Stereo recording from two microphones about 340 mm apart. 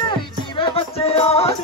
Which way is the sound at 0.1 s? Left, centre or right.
Centre.